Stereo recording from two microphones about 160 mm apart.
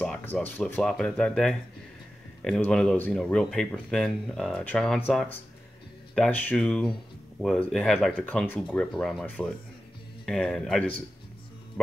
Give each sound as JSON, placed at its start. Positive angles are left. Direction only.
{"t": 0.0, "sound": "speech", "side_deg": 10}